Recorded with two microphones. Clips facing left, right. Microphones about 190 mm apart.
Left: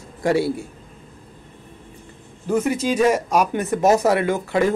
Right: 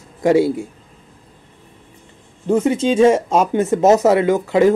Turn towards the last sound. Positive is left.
turn(degrees=-20)  # may be behind; listen again after turning